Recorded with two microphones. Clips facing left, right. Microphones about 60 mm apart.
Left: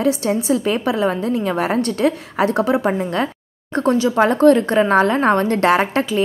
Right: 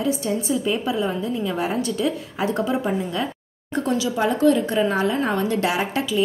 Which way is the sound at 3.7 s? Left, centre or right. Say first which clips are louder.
Left 6 dB; left.